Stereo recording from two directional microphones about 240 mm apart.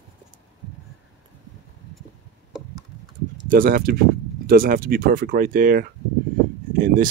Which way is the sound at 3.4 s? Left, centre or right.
Right.